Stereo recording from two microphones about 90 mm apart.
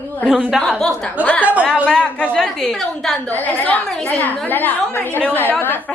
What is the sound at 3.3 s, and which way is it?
A woman's voice, 20° left (ahead or behind).